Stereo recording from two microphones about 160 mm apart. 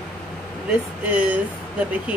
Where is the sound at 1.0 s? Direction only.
10° right (ahead or behind).